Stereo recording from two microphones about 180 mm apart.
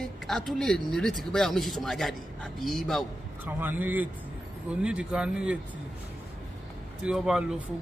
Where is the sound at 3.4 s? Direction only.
10° right (ahead or behind).